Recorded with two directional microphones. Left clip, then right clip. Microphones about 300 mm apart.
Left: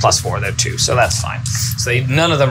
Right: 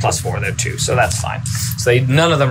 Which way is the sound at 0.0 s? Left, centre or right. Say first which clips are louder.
Left 4 dB; centre.